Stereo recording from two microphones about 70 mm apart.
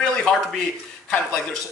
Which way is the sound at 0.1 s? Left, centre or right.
Centre.